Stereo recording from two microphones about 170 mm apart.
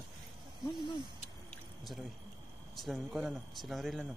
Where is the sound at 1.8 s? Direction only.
Centre (ahead or behind).